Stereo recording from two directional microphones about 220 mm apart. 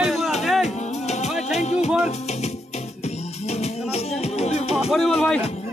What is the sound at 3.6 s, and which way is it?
Music, 30° left (ahead or behind).